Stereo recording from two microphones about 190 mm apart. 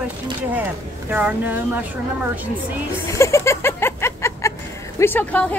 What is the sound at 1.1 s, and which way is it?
Speech, 10° right (ahead or behind).